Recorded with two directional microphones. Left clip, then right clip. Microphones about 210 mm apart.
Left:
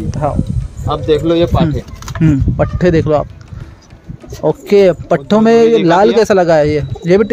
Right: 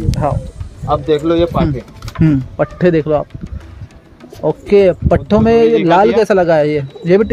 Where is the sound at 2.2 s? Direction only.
5° right (ahead or behind).